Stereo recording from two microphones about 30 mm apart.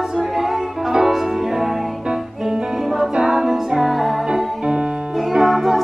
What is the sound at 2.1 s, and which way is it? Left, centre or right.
Music, right.